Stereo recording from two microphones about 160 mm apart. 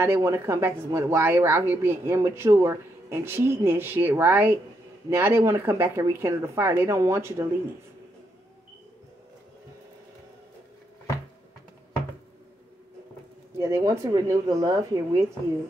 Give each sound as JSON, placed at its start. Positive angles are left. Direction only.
{"t": 0.0, "sound": "a woman's voice", "side_deg": -15}
{"t": 13.6, "sound": "speech", "side_deg": -20}